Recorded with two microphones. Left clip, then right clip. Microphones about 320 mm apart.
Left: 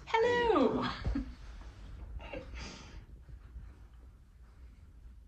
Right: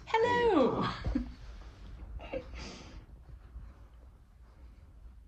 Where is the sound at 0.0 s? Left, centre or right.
Right.